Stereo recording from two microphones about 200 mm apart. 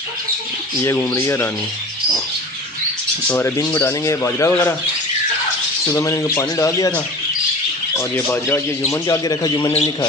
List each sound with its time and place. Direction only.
0.8 s a man's voice: 10° left (ahead or behind)
3.3 s a man's voice: 15° left (ahead or behind)
5.9 s a man's voice: 15° left (ahead or behind)
7.9 s a man's voice: 15° left (ahead or behind)